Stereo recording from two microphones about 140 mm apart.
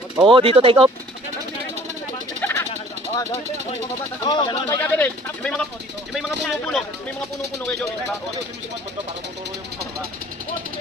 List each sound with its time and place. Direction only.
0.2 s speech: 40° right (ahead or behind)
2.4 s a sound: 15° left (ahead or behind)
4.2 s speech: 35° left (ahead or behind)
4.6 s speech: 20° left (ahead or behind)